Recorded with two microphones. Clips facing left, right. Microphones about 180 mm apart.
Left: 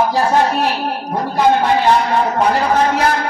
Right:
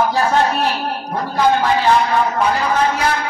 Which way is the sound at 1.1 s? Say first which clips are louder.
Left 2 dB; 20° left (ahead or behind).